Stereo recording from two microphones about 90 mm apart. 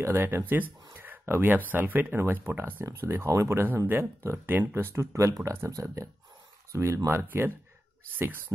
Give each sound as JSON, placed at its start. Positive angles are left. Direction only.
{"t": 0.0, "sound": "speech", "side_deg": -25}